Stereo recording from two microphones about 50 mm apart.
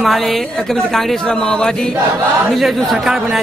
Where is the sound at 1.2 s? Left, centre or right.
Centre.